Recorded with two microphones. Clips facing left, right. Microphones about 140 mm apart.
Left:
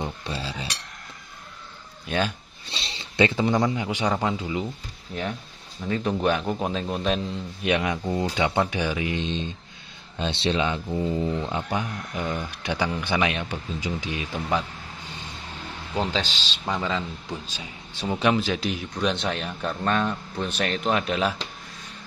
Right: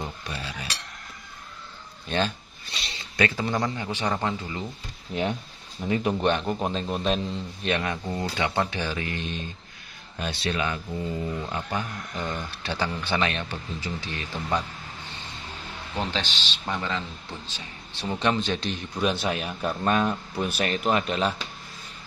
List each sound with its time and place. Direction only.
0.0 s cutlery: 30° left (ahead or behind)
2.0 s speech: 5° left (ahead or behind)
2.7 s speech: 30° left (ahead or behind); by 4.6 s 15° left (ahead or behind)
5.8 s speech: 10° right (ahead or behind)
6.1 s a man's voice: 5° left (ahead or behind)
7.6 s speech: 15° left (ahead or behind)
16.6 s speech: 15° left (ahead or behind)
18.9 s a man's voice: 5° right (ahead or behind)